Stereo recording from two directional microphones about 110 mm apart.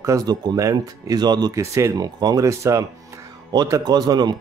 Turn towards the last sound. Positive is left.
turn(degrees=-40)  # may be behind; listen again after turning